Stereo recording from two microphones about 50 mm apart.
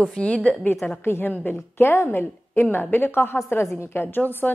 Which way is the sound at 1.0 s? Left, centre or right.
Left.